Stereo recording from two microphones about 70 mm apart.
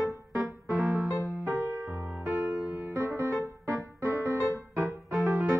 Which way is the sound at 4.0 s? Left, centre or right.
Right.